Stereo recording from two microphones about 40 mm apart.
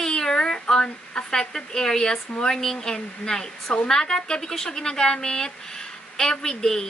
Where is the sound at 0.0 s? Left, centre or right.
Centre.